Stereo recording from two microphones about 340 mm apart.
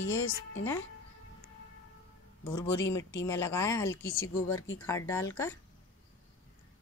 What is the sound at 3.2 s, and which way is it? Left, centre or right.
Speech, centre.